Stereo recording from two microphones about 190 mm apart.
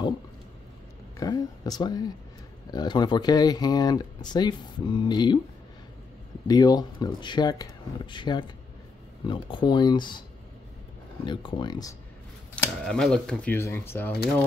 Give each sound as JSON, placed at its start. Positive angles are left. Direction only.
{"t": 1.1, "sound": "speech", "side_deg": 20}
{"t": 6.4, "sound": "speech", "side_deg": 20}
{"t": 11.2, "sound": "speech", "side_deg": 25}
{"t": 12.5, "sound": "speech", "side_deg": 5}